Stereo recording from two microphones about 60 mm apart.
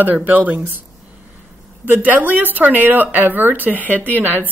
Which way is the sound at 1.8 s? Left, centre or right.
Right.